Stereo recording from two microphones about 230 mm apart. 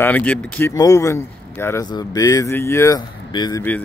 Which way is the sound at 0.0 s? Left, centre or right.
Centre.